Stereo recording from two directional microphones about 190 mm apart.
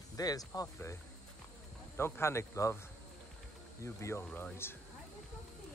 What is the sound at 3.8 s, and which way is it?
Speech, 15° left (ahead or behind).